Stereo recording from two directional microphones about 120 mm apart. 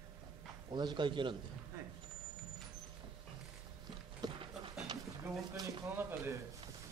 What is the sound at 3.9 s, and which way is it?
Dog, 35° right (ahead or behind).